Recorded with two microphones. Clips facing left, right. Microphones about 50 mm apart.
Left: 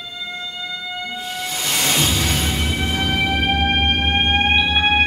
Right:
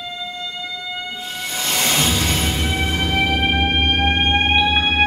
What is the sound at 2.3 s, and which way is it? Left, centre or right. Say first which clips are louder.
Music: even; right.